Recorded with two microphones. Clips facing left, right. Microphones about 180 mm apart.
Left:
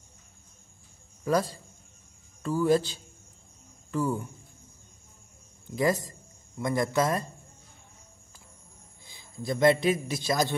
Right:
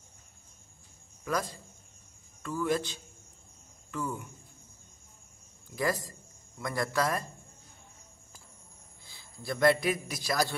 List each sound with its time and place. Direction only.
1.2 s speech: 30° left (ahead or behind)
5.7 s speech: 20° left (ahead or behind)
9.0 s speech: 20° left (ahead or behind)